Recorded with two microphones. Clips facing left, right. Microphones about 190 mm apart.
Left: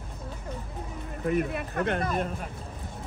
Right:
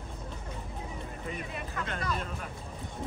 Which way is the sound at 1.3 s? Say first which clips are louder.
Left 13 dB; 60° left (ahead or behind).